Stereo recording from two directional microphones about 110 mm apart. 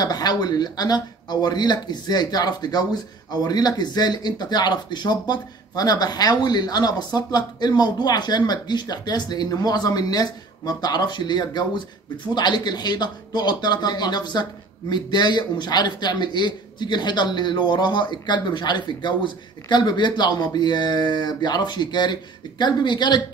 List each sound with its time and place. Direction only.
0.0 s speech: 35° left (ahead or behind)